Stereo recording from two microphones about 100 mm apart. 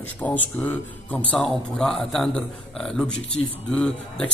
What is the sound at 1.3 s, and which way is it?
A man's voice, 5° left (ahead or behind).